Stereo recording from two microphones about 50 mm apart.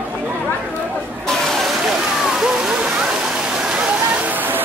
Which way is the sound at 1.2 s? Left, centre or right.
Centre.